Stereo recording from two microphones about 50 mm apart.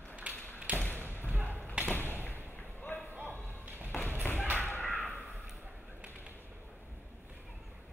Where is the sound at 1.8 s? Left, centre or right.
Right.